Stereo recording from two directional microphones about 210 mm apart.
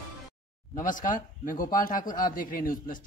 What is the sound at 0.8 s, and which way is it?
Speech, 40° left (ahead or behind).